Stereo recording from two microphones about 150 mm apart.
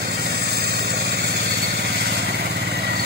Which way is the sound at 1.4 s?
90° right.